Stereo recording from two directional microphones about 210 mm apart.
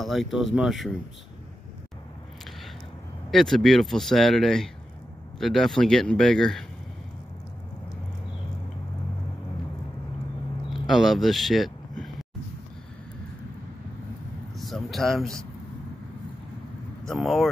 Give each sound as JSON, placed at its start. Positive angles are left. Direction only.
{"t": 0.0, "sound": "speech", "side_deg": 0}
{"t": 3.3, "sound": "speech", "side_deg": 0}
{"t": 10.7, "sound": "a sound", "side_deg": 0}
{"t": 14.6, "sound": "speech", "side_deg": 0}
{"t": 17.0, "sound": "speech", "side_deg": 0}